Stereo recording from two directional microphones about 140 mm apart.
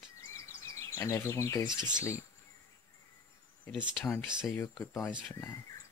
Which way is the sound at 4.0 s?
5° left (ahead or behind).